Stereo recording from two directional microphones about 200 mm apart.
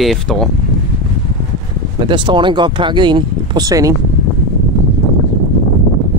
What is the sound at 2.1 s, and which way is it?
Speech, 25° right (ahead or behind).